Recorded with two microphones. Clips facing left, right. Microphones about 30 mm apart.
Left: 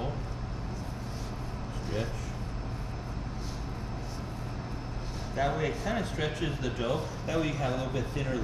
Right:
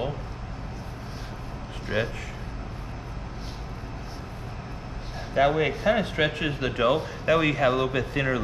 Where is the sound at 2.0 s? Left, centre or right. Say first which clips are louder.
Right 8 dB; right.